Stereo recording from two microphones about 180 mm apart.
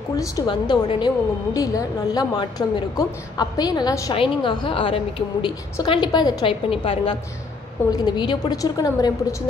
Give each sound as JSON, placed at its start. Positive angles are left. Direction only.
{"t": 0.2, "sound": "a woman's voice", "side_deg": 20}